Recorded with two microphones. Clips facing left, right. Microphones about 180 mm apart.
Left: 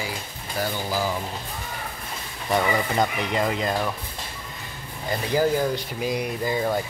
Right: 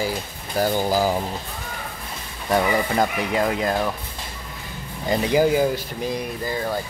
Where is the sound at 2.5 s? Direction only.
5° right (ahead or behind).